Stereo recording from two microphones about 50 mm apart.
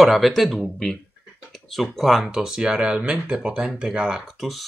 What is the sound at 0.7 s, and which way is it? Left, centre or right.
Speech, centre.